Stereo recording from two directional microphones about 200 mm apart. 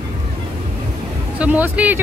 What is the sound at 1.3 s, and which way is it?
Speech, 5° right (ahead or behind).